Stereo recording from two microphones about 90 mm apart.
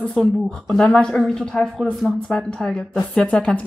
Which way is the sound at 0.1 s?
5° left (ahead or behind).